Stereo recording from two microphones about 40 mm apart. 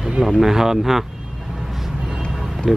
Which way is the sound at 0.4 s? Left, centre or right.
Centre.